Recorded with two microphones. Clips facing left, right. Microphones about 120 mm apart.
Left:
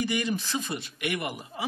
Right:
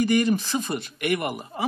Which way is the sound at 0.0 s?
45° right (ahead or behind).